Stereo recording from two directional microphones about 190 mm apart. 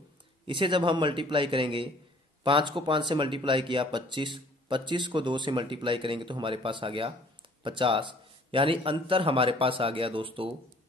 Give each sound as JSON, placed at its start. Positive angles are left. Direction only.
{"t": 0.5, "sound": "speech", "side_deg": -25}